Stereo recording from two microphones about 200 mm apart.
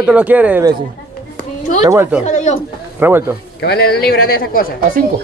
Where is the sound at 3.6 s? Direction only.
55° left (ahead or behind).